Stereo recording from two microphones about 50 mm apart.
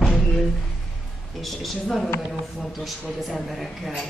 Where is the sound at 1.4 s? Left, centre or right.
Centre.